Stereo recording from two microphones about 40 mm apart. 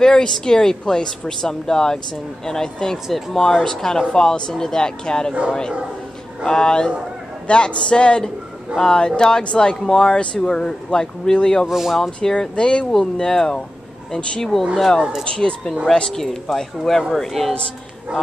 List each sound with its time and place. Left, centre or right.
0.0 s speech: centre
11.6 s speech: centre
12.2 s speech: left
15.2 s a woman's voice: left; by 17.6 s centre